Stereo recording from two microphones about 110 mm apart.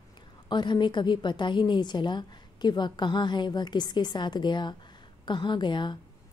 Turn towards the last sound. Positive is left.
turn(degrees=45)  # may be behind; listen again after turning